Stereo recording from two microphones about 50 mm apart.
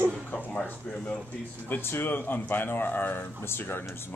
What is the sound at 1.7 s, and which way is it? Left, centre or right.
Speech, left.